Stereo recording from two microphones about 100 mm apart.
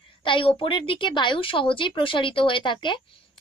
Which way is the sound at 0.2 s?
60° left (ahead or behind).